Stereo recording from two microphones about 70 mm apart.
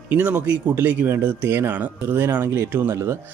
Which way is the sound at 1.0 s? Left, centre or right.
Right.